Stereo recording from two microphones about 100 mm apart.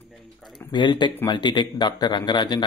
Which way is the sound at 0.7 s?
50° left (ahead or behind).